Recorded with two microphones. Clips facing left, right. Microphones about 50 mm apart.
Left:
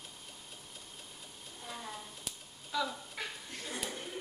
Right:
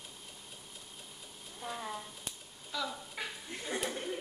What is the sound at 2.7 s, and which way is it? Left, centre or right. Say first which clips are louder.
Speech: left 3 dB; centre.